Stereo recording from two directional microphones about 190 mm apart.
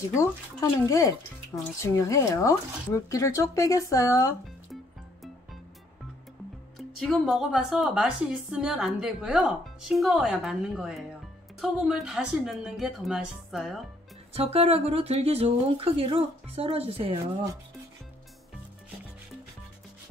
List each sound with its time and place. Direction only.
0.1 s speech: 15° left (ahead or behind)
6.8 s speech: centre (ahead or behind)
14.3 s speech: 30° right (ahead or behind)